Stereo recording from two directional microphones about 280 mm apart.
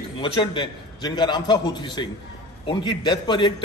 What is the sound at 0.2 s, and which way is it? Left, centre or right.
A man's voice, centre.